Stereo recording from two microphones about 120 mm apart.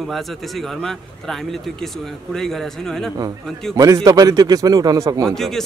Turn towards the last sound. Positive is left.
turn(degrees=5)  # may be behind; listen again after turning